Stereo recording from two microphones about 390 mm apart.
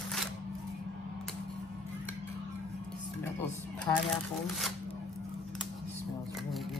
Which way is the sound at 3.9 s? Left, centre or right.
Centre.